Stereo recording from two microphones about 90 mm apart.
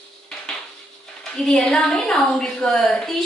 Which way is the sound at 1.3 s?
5° left (ahead or behind).